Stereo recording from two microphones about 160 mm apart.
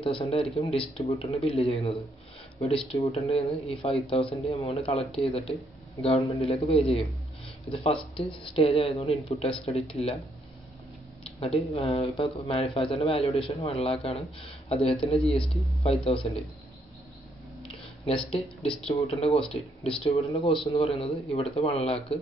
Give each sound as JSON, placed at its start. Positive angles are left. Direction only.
{"t": 0.0, "sound": "speech", "side_deg": 35}
{"t": 11.4, "sound": "speech", "side_deg": 35}
{"t": 18.0, "sound": "speech", "side_deg": 35}